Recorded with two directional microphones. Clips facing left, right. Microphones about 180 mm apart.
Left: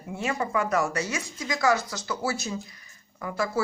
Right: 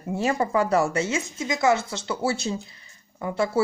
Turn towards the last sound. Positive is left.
turn(degrees=-25)  # may be behind; listen again after turning